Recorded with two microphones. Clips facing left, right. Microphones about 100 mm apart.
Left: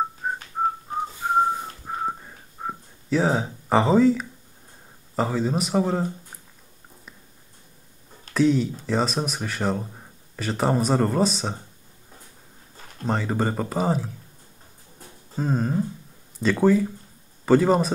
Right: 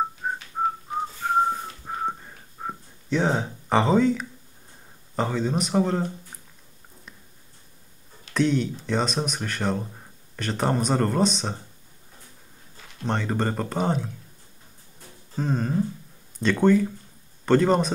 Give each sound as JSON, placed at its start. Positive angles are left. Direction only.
{"t": 0.2, "sound": "whistling", "side_deg": 0}
{"t": 0.9, "sound": "whistling", "side_deg": 40}
{"t": 1.2, "sound": "whistling", "side_deg": 5}
{"t": 5.1, "sound": "speech", "side_deg": 5}
{"t": 8.3, "sound": "speech", "side_deg": 0}
{"t": 13.0, "sound": "speech", "side_deg": 5}
{"t": 15.3, "sound": "speech", "side_deg": 5}